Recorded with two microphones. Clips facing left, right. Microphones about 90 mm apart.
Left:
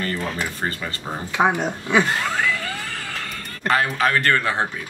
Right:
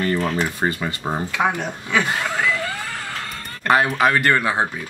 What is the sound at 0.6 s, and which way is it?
Speech, 15° right (ahead or behind).